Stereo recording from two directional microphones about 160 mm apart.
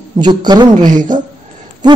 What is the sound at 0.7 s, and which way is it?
Speech, 55° right (ahead or behind).